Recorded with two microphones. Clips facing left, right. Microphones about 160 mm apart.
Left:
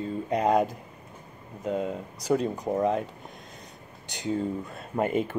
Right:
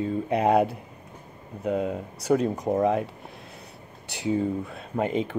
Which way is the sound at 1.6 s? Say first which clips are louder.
Right 3 dB; centre (ahead or behind).